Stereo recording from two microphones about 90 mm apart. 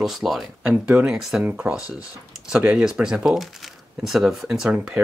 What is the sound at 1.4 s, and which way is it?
Speech, 20° right (ahead or behind).